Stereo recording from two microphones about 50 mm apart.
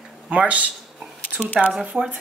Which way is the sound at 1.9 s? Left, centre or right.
Centre.